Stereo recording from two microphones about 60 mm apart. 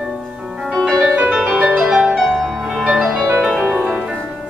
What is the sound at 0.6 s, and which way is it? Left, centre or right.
Music, centre.